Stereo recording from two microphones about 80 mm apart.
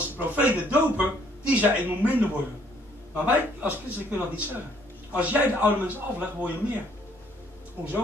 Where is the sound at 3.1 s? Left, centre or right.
Centre.